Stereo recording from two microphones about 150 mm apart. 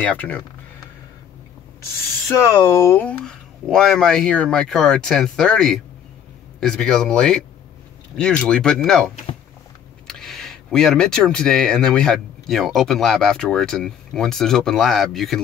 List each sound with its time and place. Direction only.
0.0 s speech: 10° left (ahead or behind)
2.2 s speech: 20° left (ahead or behind)
3.3 s speech: 5° left (ahead or behind)